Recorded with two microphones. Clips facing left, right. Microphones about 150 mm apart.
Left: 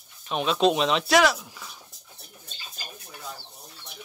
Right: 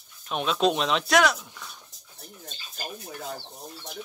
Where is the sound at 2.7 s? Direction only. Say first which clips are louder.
Right 8 dB; 50° right (ahead or behind).